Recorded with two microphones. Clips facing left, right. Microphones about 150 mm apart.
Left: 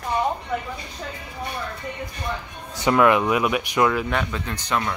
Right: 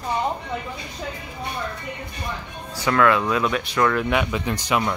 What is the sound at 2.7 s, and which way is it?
Speech, 20° left (ahead or behind).